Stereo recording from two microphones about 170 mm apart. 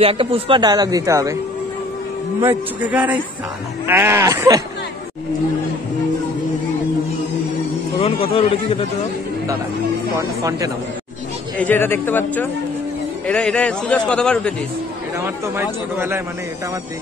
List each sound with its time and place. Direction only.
0.0 s speech: 35° right (ahead or behind); by 1.3 s 20° right (ahead or behind)
2.4 s speech: 10° right (ahead or behind)
8.0 s a man's voice: 35° left (ahead or behind)
10.1 s speech: 20° right (ahead or behind)
11.5 s a man's voice: 10° left (ahead or behind)
15.1 s speech: 15° right (ahead or behind)